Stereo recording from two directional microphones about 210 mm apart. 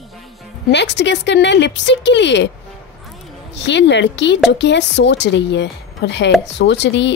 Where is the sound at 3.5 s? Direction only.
55° left (ahead or behind).